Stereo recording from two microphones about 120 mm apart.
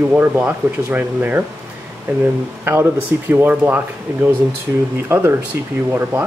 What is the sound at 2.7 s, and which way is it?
Speech, 15° right (ahead or behind).